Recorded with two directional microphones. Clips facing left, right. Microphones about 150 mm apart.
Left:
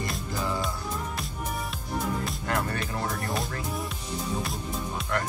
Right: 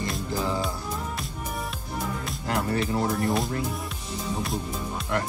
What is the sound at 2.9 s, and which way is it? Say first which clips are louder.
Speech: right 6 dB; 25° right (ahead or behind).